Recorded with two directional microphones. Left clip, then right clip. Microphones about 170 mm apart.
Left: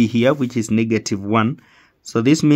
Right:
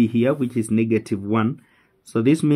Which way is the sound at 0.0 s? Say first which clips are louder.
Left 3 dB; 30° left (ahead or behind).